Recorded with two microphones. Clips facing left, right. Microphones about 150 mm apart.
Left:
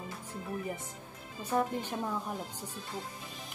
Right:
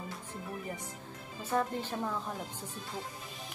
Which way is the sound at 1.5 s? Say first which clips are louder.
Left 1 dB; 15° left (ahead or behind).